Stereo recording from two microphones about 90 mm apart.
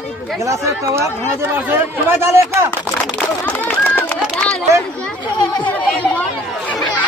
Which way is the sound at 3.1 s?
15° left (ahead or behind).